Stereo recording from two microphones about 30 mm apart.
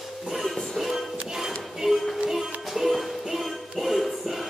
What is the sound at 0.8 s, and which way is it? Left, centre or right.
Music, centre.